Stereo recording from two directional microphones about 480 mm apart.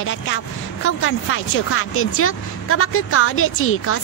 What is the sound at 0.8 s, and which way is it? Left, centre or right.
Speech, left.